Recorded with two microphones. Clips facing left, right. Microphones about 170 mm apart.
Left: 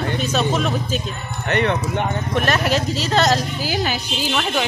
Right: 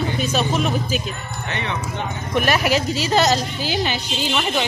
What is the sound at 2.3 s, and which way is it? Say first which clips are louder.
A woman's voice: right 2 dB; 10° right (ahead or behind).